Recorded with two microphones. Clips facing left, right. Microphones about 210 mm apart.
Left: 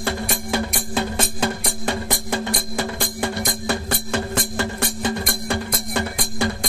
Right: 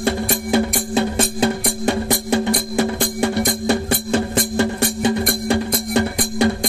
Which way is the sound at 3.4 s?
25° right (ahead or behind).